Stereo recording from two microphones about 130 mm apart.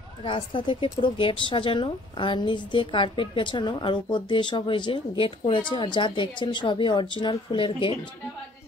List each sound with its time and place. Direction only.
0.2 s a woman's voice: 40° left (ahead or behind)